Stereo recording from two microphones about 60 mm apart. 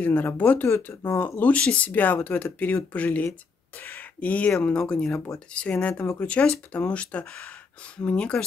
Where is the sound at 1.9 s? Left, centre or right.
Left.